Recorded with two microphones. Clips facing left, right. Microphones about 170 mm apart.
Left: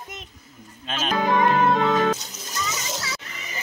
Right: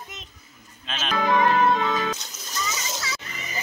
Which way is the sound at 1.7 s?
55° left (ahead or behind).